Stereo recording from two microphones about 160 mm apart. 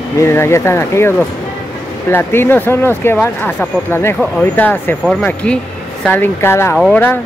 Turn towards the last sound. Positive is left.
turn(degrees=15)  # may be behind; listen again after turning